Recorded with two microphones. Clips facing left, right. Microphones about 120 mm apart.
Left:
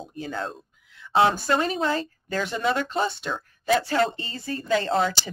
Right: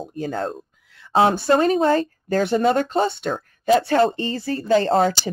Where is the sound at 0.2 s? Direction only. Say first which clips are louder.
Right 6 dB; 45° right (ahead or behind).